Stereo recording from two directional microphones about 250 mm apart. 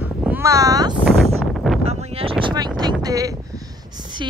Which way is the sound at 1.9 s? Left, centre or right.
Right.